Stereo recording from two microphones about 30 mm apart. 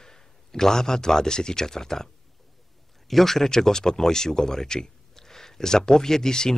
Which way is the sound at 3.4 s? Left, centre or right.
Centre.